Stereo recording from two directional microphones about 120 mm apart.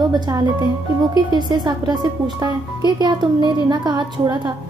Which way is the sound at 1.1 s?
35° right (ahead or behind).